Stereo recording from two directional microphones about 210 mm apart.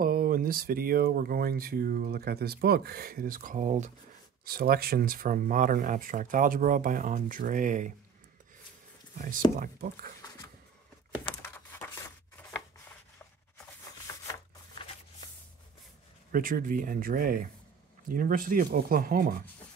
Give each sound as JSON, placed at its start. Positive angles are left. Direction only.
{"t": 0.0, "sound": "speech", "side_deg": -45}
{"t": 14.1, "sound": "a sound", "side_deg": 15}
{"t": 16.3, "sound": "speech", "side_deg": -45}